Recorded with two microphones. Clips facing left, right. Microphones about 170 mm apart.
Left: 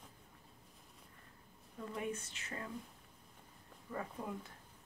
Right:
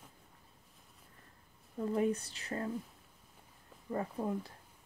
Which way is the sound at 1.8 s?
35° right (ahead or behind).